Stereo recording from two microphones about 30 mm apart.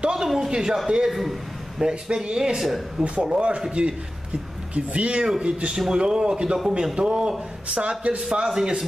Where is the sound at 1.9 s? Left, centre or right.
Right.